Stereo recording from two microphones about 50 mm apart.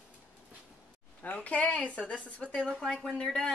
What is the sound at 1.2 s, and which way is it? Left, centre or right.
A woman's voice, left.